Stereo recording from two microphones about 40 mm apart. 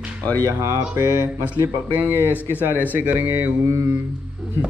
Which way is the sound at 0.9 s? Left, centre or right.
Right.